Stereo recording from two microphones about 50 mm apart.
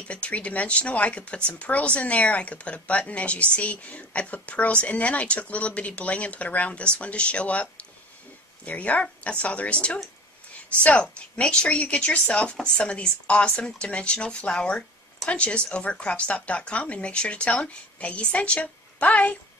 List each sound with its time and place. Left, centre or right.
0.1 s speech: left